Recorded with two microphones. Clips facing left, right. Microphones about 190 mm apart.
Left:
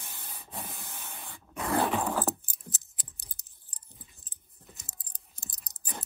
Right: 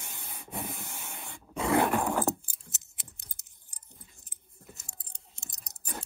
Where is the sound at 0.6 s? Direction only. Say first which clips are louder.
Right 5 dB; 60° right (ahead or behind).